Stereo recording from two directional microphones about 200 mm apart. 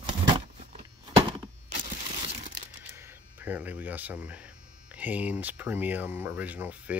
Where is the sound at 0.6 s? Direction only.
35° right (ahead or behind).